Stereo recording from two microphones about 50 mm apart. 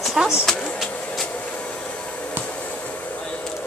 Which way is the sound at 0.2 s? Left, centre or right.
Centre.